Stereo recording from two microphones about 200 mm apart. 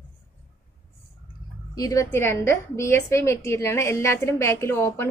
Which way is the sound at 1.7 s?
15° left (ahead or behind).